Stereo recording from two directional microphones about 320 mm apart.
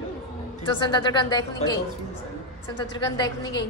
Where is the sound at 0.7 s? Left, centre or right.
Centre.